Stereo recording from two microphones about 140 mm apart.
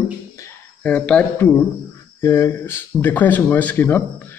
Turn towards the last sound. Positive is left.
turn(degrees=15)  # may be behind; listen again after turning